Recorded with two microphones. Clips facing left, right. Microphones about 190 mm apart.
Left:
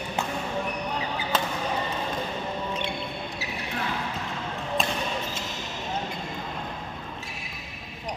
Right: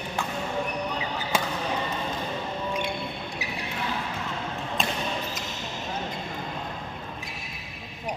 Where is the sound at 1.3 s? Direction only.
10° right (ahead or behind).